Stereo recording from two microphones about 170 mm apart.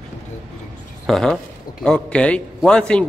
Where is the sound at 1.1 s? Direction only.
Centre (ahead or behind).